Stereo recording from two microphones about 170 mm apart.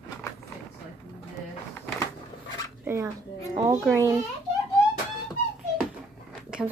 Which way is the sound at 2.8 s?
15° right (ahead or behind).